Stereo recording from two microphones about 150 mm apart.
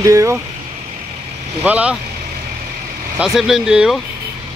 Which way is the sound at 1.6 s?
10° right (ahead or behind).